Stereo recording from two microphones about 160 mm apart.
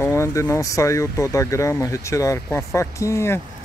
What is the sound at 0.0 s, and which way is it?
Speech, 15° left (ahead or behind).